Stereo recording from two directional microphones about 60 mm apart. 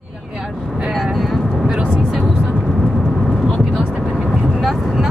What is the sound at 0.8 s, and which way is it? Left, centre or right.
Vehicle, centre.